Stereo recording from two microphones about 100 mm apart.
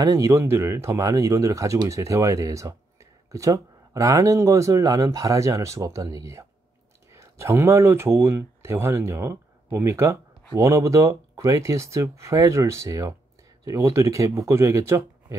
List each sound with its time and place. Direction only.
0.0 s speech: 40° right (ahead or behind)
0.3 s speech: 25° right (ahead or behind)